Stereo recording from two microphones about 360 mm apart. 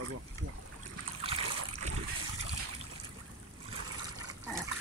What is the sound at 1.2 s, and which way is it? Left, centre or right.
Splash, centre.